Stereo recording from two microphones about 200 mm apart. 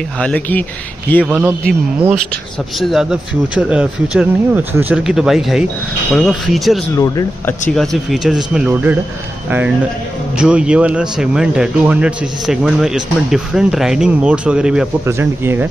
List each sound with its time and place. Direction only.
0.2 s speech: 5° left (ahead or behind)
1.2 s a man's voice: 5° right (ahead or behind)
7.0 s speech: 15° left (ahead or behind)
7.7 s speech: centre (ahead or behind)
10.3 s speech: 5° right (ahead or behind)